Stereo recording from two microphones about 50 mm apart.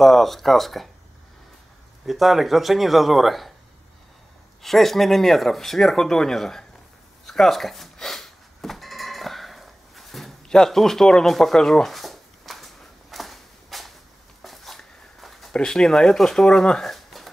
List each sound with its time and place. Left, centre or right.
0.0 s speech: centre
2.0 s speech: centre
4.6 s speech: centre
7.2 s a sound: centre
15.5 s speech: centre